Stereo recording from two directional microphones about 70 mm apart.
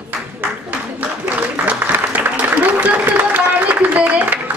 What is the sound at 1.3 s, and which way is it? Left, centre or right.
Applause, right.